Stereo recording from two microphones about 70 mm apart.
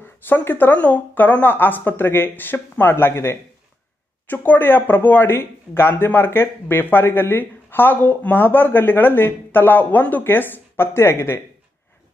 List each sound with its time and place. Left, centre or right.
0.0 s speech: left